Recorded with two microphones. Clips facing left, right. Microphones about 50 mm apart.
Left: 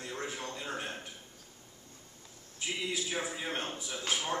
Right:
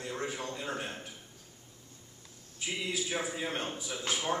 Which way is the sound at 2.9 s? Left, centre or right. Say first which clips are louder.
Right 1 dB; centre.